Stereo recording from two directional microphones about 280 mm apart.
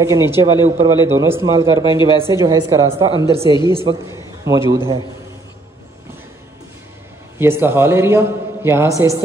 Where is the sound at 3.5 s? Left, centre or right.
Centre.